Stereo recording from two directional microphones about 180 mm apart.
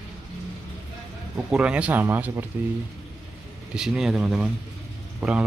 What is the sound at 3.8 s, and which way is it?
Speech, 5° right (ahead or behind).